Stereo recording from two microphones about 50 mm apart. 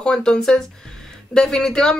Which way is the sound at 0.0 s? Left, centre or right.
Centre.